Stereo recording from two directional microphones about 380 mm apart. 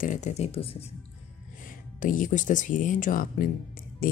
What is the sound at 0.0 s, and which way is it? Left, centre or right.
Speech, centre.